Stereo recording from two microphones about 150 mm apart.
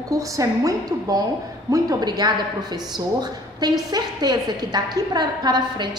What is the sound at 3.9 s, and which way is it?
A woman's voice, 25° right (ahead or behind).